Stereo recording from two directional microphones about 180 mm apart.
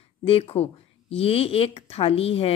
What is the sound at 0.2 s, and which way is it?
Speech, 30° left (ahead or behind).